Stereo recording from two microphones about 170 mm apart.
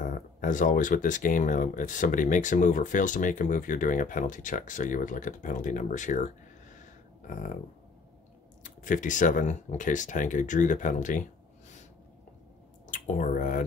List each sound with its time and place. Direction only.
0.0 s speech: 50° left (ahead or behind)
6.8 s a sound: 50° left (ahead or behind)
8.8 s speech: 50° left (ahead or behind)
12.8 s speech: 50° left (ahead or behind)